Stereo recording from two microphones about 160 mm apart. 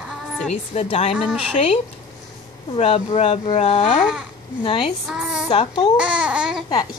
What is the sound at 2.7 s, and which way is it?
Speech, 35° left (ahead or behind).